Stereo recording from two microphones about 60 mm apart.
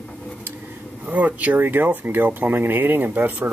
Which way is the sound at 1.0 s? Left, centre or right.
Right.